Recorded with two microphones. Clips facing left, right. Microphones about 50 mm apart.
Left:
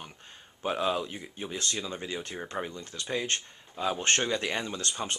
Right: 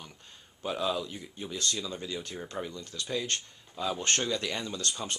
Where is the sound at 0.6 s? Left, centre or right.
Left.